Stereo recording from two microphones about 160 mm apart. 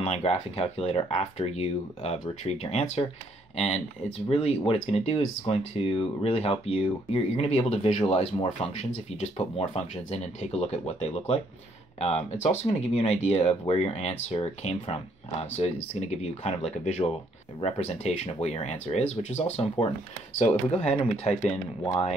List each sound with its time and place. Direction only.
0.0 s speech: 40° left (ahead or behind)